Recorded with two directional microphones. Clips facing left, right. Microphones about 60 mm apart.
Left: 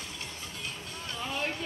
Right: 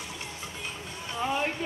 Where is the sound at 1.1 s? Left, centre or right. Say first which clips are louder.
Right 6 dB; centre.